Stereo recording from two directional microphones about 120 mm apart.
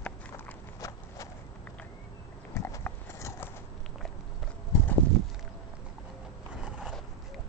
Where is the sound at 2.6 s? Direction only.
25° left (ahead or behind).